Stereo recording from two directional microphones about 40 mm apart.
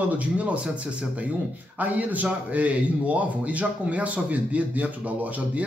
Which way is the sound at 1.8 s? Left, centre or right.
Right.